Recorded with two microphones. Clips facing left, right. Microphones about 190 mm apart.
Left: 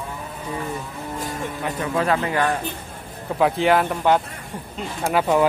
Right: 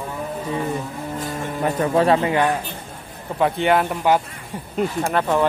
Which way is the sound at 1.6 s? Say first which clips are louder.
Right 5 dB; 30° right (ahead or behind).